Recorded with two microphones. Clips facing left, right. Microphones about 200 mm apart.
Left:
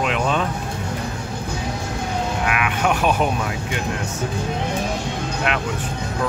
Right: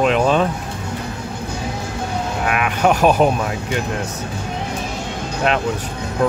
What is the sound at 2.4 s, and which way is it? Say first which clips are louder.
Speech: right 6 dB; 40° right (ahead or behind).